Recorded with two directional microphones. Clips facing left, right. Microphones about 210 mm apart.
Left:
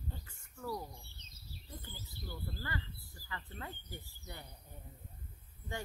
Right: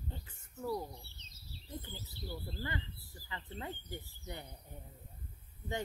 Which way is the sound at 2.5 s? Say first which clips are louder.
Right 1 dB; 20° right (ahead or behind).